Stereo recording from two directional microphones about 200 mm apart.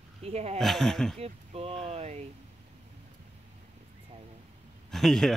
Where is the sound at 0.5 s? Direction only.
Centre (ahead or behind).